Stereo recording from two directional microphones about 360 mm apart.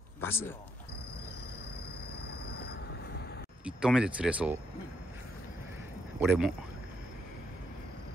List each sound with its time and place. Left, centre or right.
0.2 s speech: centre
2.4 s vehicle: left
3.6 s speech: centre
6.1 s speech: centre